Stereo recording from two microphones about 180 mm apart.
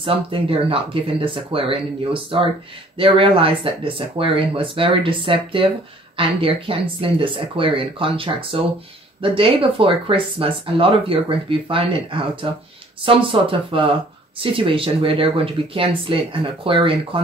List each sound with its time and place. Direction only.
0.0 s speech: 30° right (ahead or behind)